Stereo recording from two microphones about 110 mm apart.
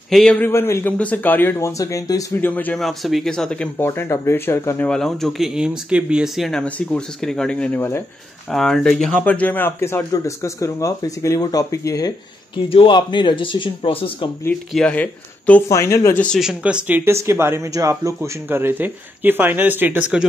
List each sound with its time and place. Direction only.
0.1 s a man's voice: 5° left (ahead or behind)
0.4 s speech: 25° left (ahead or behind)
2.3 s speech: 15° left (ahead or behind)
2.8 s a man's voice: centre (ahead or behind)
3.8 s speech: 20° left (ahead or behind)
4.8 s a man's voice: 5° left (ahead or behind)
9.2 s speech: 15° left (ahead or behind); by 12.1 s 30° left (ahead or behind)
12.6 s speech: 55° left (ahead or behind)
14.7 s speech: 10° left (ahead or behind)
15.7 s speech: 25° left (ahead or behind)
16.3 s speech: 5° right (ahead or behind)